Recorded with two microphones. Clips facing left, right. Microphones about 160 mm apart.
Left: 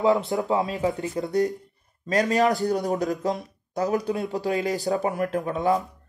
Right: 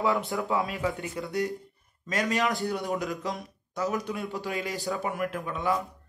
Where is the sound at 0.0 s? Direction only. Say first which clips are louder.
Left 6 dB; 20° left (ahead or behind).